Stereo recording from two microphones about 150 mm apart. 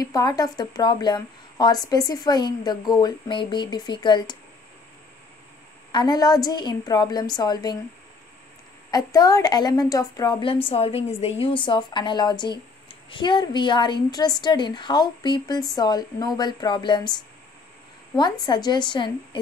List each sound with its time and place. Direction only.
0.0 s a woman's voice: 25° left (ahead or behind)
5.9 s a woman's voice: 30° left (ahead or behind)
8.9 s a woman's voice: 25° left (ahead or behind)
10.4 s a woman's voice: 40° left (ahead or behind)
18.1 s a woman's voice: 30° left (ahead or behind)